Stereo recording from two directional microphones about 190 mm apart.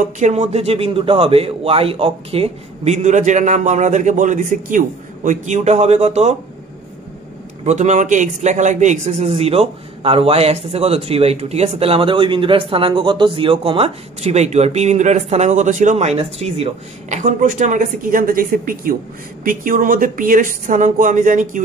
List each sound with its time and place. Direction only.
0.0 s a man's voice: 35° right (ahead or behind)
7.6 s a man's voice: 35° right (ahead or behind)